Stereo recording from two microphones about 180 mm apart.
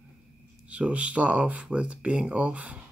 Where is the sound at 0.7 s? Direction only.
5° right (ahead or behind).